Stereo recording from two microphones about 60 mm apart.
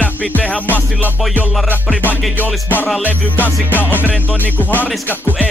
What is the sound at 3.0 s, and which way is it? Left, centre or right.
Music, left.